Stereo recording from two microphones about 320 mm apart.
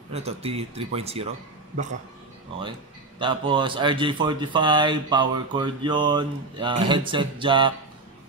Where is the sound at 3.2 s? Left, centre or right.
Centre.